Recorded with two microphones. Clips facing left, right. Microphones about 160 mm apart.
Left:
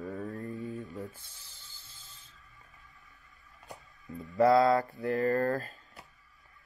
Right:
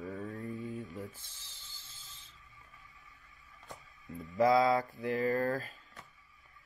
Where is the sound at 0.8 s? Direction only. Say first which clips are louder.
Left 2 dB; 20° left (ahead or behind).